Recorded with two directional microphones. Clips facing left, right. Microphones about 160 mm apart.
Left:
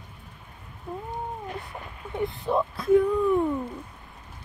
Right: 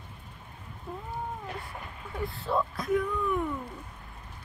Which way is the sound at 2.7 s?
30° left (ahead or behind).